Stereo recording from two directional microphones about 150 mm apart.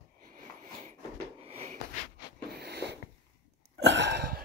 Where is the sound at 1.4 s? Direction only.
45° right (ahead or behind).